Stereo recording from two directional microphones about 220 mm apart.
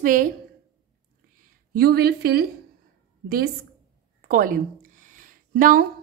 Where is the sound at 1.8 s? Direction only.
45° right (ahead or behind).